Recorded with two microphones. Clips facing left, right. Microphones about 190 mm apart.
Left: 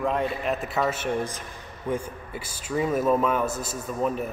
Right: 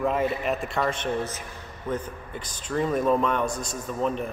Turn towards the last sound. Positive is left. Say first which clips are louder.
# even
turn(degrees=5)  # may be behind; listen again after turning